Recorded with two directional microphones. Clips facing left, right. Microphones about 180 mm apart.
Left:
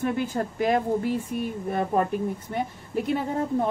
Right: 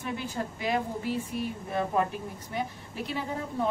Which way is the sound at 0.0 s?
50° left (ahead or behind).